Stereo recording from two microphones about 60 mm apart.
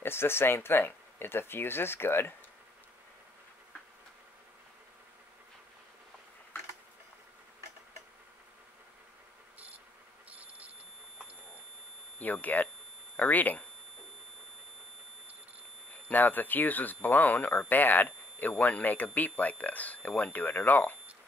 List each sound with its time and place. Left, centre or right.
0.0 s speech: left
10.3 s telephone: right
12.2 s speech: left
16.1 s speech: left